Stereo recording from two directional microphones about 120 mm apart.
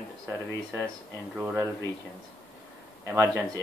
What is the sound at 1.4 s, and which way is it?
Speech, 15° right (ahead or behind).